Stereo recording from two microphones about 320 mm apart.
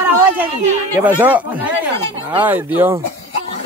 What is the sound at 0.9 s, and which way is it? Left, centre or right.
A man's voice, centre.